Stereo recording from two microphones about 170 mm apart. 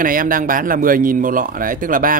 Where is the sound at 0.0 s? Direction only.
55° right (ahead or behind).